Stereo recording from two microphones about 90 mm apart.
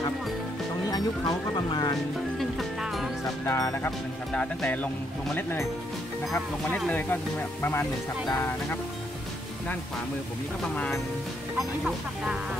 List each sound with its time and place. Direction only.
0.8 s speech: 45° left (ahead or behind)
2.3 s music: centre (ahead or behind)
3.4 s speech: 40° left (ahead or behind)
4.3 s speech: 10° left (ahead or behind)
6.9 s speech: 25° left (ahead or behind)
10.6 s speech: 15° left (ahead or behind)